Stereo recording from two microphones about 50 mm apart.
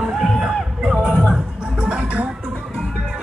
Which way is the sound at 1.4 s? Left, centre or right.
Centre.